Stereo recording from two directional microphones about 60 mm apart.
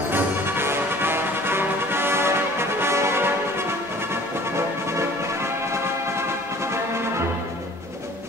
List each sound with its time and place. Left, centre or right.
0.1 s music: right